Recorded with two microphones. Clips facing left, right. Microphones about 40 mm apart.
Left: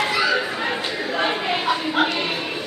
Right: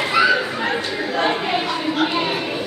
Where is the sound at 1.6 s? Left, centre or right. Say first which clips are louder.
Even; centre.